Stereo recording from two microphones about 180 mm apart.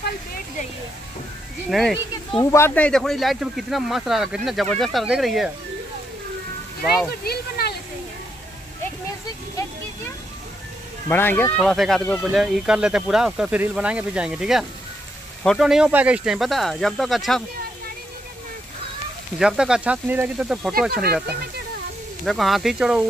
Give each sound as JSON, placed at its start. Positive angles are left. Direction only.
{"t": 1.7, "sound": "speech", "side_deg": 0}
{"t": 2.5, "sound": "speech", "side_deg": 10}
{"t": 7.2, "sound": "speech", "side_deg": 60}
{"t": 11.1, "sound": "speech", "side_deg": 10}
{"t": 19.3, "sound": "speech", "side_deg": -5}
{"t": 20.9, "sound": "speech", "side_deg": -60}
{"t": 22.2, "sound": "speech", "side_deg": 0}